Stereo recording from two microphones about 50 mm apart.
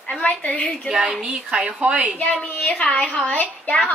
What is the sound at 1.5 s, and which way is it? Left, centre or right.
Speech, right.